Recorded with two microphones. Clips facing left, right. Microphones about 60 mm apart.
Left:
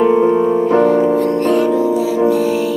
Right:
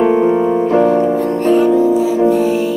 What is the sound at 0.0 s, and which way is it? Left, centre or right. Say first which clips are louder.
Music: even; right.